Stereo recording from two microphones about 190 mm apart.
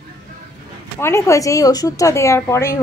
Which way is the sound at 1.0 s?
15° left (ahead or behind).